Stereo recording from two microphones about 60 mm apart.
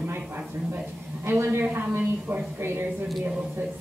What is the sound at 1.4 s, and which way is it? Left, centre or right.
A woman's voice, right.